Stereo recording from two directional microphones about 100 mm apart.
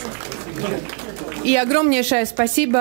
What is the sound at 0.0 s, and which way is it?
Speech, 15° right (ahead or behind).